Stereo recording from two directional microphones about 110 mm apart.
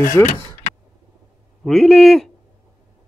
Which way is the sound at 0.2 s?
25° left (ahead or behind).